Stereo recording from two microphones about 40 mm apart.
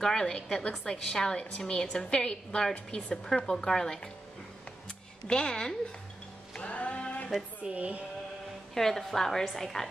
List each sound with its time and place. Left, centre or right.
0.0 s a woman's voice: centre
3.3 s a woman's voice: centre
5.3 s a woman's voice: left
6.5 s music: left
7.6 s speech: right
8.7 s a woman's voice: centre